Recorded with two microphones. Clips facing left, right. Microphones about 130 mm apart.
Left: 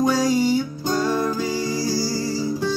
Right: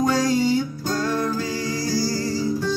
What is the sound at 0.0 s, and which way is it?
Music, 5° left (ahead or behind).